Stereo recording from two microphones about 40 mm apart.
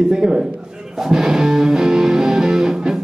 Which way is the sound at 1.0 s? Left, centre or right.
Centre.